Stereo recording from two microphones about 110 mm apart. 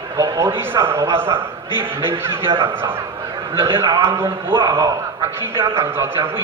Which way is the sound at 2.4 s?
50° right (ahead or behind).